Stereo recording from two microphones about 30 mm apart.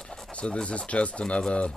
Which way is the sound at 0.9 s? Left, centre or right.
Left.